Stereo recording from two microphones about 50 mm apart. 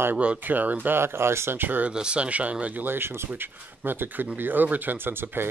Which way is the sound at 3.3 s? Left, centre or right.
Right.